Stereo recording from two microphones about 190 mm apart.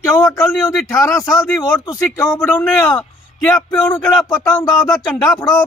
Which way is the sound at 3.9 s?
20° left (ahead or behind).